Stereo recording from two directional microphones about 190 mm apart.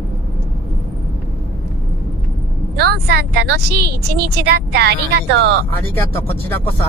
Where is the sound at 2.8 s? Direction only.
60° right (ahead or behind).